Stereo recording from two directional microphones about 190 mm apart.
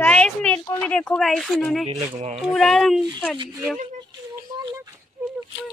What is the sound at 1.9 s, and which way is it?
Speech, 35° right (ahead or behind).